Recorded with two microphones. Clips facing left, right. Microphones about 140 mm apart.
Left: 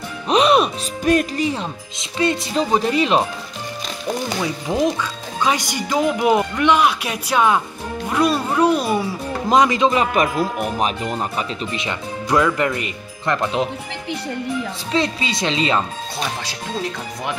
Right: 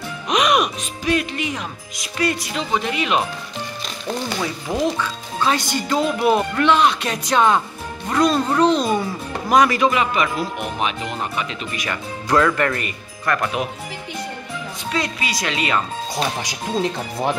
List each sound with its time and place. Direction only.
0.3 s music: 30° left (ahead or behind)
1.0 s speech: 40° left (ahead or behind)
2.6 s speech: 40° left (ahead or behind)
4.6 s speech: 15° left (ahead or behind)
9.5 s speech: 20° left (ahead or behind)
9.9 s speech: 40° left (ahead or behind)
11.1 s speech: 25° left (ahead or behind)
12.3 s speech: 15° left (ahead or behind)
14.9 s speech: 30° left (ahead or behind)
16.2 s speech: 15° right (ahead or behind)